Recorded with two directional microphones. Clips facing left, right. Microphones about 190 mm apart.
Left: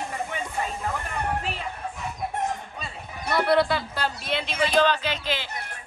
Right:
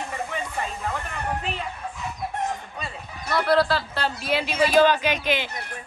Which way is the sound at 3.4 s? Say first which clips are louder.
Right 1 dB; 20° left (ahead or behind).